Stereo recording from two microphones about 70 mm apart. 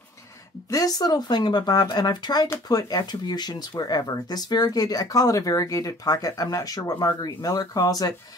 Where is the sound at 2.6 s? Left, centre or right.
Left.